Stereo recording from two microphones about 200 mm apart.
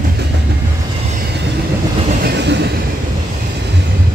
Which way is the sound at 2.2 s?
60° right (ahead or behind).